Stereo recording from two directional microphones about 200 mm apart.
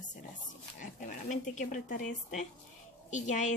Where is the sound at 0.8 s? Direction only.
40° left (ahead or behind).